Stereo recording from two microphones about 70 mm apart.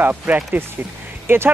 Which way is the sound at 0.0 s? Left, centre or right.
Right.